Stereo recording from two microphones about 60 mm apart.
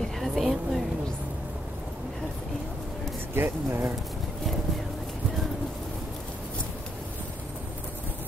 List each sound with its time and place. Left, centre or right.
0.2 s vehicle: centre
3.3 s speech: right